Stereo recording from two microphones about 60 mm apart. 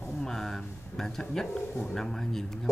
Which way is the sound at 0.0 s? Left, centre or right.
Centre.